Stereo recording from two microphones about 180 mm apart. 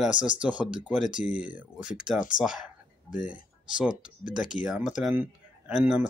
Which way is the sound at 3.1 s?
50° left (ahead or behind).